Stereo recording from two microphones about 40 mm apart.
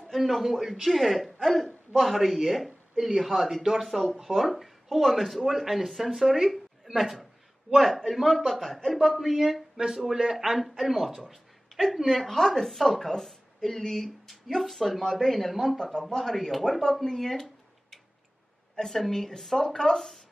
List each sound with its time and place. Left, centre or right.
0.3 s speech: centre
0.8 s a woman's voice: centre
8.9 s a man's voice: centre
10.8 s speech: centre
11.2 s a sound: centre
12.1 s a woman's voice: centre
15.8 s a woman's voice: centre
18.8 s a woman's voice: centre